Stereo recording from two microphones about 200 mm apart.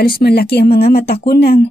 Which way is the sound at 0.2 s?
50° left (ahead or behind).